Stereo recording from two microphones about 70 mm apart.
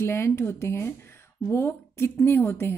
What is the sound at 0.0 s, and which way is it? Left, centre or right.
A woman's voice, left.